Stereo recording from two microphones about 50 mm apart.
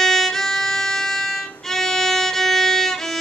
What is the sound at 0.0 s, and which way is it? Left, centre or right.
Violin, centre.